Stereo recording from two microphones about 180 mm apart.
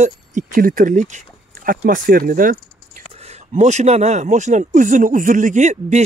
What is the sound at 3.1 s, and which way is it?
Speech, 35° right (ahead or behind).